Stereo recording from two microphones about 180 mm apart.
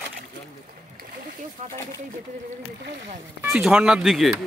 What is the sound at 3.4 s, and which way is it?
Speech, 5° right (ahead or behind).